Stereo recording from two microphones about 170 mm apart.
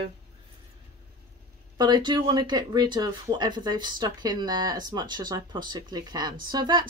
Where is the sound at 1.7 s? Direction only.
25° right (ahead or behind).